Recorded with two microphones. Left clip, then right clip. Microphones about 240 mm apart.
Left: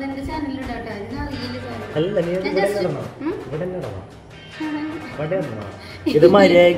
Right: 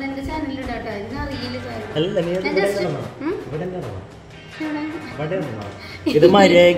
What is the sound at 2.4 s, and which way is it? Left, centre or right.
Speech, centre.